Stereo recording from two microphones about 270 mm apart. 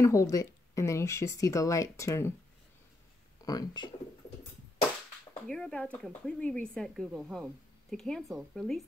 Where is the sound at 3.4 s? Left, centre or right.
Centre.